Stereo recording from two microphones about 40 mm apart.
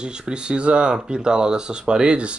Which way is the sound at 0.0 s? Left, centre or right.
Right.